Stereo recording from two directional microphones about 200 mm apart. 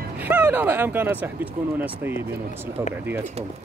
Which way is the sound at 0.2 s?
10° right (ahead or behind).